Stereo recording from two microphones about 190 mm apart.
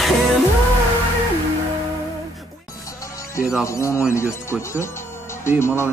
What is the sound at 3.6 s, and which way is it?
Speech, 15° left (ahead or behind).